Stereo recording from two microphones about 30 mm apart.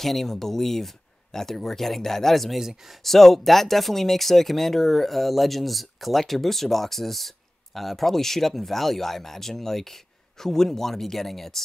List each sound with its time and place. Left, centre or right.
0.0 s speech: centre